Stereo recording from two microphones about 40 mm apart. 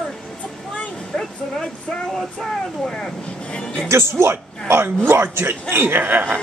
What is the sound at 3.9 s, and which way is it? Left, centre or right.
Speech, right.